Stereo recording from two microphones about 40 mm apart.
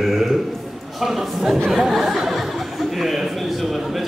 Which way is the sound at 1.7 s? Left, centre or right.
Centre.